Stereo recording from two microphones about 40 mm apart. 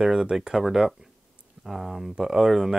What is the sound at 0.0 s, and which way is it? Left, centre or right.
Speech, centre.